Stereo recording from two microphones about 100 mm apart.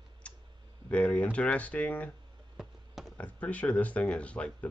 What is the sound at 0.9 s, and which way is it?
Speech, 15° left (ahead or behind).